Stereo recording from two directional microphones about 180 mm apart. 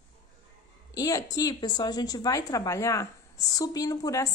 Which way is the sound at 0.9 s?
20° left (ahead or behind).